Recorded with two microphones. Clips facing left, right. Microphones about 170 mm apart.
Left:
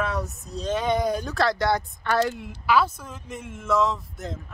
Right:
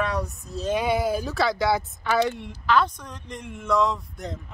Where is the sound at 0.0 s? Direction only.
Centre (ahead or behind).